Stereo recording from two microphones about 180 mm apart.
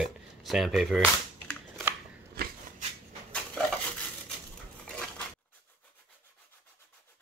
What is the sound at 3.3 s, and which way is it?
Dishes, 5° left (ahead or behind).